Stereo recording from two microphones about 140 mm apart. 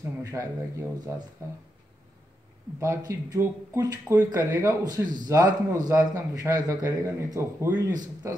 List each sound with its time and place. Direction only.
0.2 s speech: 25° right (ahead or behind)
2.8 s speech: 20° right (ahead or behind)